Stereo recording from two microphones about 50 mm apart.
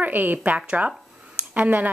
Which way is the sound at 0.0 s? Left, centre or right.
Right.